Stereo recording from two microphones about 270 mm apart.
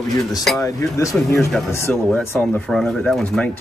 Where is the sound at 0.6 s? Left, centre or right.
Centre.